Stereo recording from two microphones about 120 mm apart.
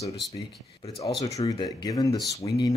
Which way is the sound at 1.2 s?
30° left (ahead or behind).